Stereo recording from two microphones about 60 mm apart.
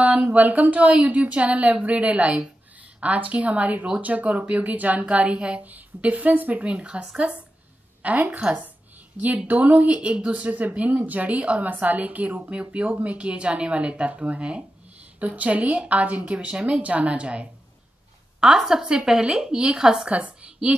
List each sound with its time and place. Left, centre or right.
0.0 s a woman's voice: right
9.5 s speech: right
18.4 s a woman's voice: centre